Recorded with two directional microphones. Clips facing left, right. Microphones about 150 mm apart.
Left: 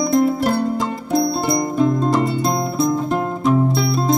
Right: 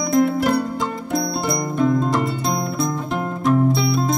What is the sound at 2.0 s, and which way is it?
Music, centre (ahead or behind).